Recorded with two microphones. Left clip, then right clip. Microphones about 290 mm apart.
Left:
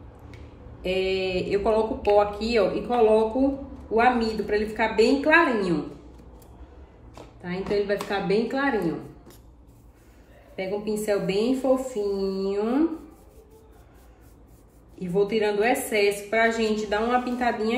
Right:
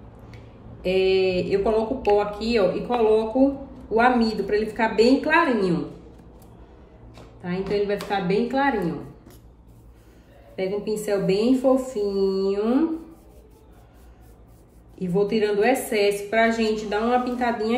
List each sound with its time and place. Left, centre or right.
0.8 s a woman's voice: centre
7.4 s speech: centre
10.5 s a woman's voice: centre
15.0 s a woman's voice: centre